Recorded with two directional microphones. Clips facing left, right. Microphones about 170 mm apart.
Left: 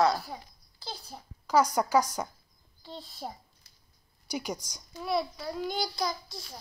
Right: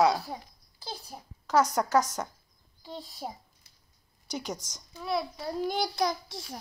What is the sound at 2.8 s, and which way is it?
Speech, 10° right (ahead or behind).